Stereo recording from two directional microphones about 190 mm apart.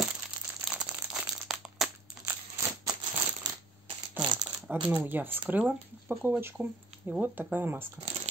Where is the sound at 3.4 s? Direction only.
20° right (ahead or behind).